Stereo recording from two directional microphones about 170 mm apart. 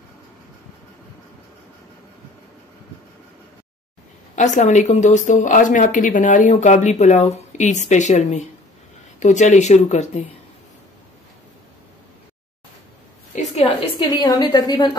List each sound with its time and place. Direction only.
4.4 s speech: 45° left (ahead or behind)
13.3 s a sound: 45° left (ahead or behind)
13.9 s a woman's voice: 25° left (ahead or behind)